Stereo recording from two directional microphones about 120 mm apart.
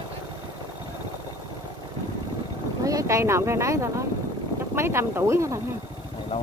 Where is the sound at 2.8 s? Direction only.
25° right (ahead or behind).